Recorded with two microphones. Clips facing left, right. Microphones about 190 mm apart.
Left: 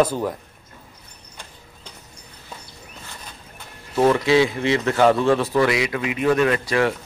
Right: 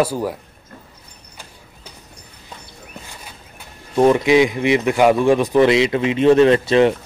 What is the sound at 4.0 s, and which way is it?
A man's voice, 15° right (ahead or behind).